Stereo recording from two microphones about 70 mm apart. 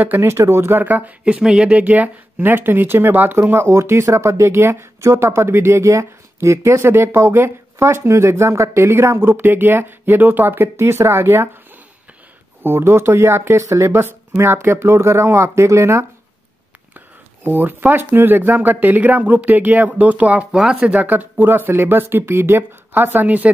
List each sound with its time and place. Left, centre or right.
0.0 s speech: right
1.2 s speech: centre; by 11.4 s right
12.6 s speech: right
17.5 s speech: right